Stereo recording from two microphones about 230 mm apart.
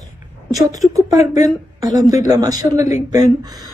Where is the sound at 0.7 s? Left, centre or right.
Centre.